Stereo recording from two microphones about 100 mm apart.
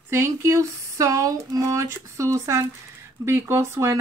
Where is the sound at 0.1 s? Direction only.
25° right (ahead or behind).